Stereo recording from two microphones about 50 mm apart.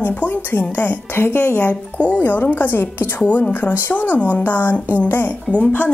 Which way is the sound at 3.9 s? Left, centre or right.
Left.